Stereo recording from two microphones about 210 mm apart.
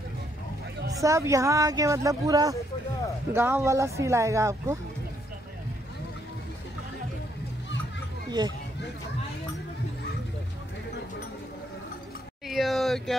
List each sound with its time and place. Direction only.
0.9 s speech: 15° right (ahead or behind)
8.3 s speech: 20° right (ahead or behind)
12.4 s a sound: centre (ahead or behind)